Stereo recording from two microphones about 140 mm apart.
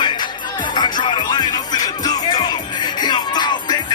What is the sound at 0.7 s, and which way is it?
Music, 30° left (ahead or behind).